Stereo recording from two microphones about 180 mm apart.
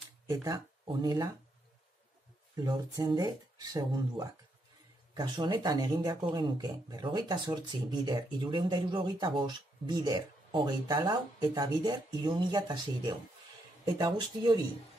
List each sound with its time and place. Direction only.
0.3 s speech: 20° right (ahead or behind)
2.5 s speech: 20° right (ahead or behind)